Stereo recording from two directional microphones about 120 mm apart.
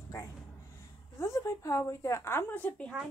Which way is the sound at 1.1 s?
20° left (ahead or behind).